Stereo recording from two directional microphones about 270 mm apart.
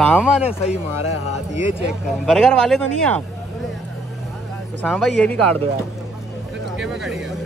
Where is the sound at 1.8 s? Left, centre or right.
Centre.